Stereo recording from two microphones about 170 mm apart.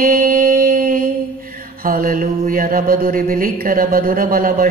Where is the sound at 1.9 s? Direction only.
55° right (ahead or behind).